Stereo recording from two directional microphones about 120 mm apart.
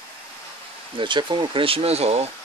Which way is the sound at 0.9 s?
40° right (ahead or behind).